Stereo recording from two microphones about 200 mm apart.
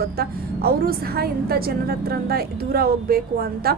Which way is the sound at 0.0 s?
50° right (ahead or behind).